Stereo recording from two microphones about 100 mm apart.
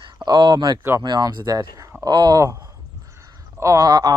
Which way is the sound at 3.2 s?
30° right (ahead or behind).